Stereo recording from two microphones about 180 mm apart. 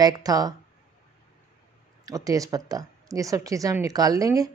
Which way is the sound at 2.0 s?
20° right (ahead or behind).